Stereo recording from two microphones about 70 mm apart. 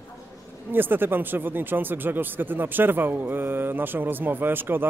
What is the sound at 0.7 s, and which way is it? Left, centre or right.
Speech, right.